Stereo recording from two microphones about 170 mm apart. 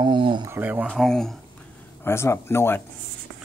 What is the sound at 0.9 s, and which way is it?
Speech, 5° left (ahead or behind).